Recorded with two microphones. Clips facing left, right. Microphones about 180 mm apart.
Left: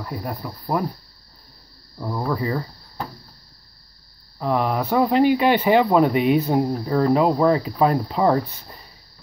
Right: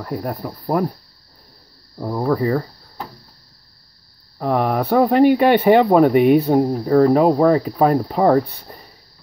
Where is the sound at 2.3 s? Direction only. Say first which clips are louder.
Right 7 dB; 45° right (ahead or behind).